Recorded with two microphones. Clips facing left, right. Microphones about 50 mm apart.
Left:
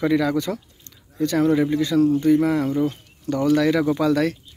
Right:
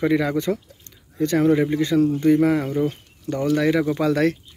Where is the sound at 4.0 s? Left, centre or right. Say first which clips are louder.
Even; right.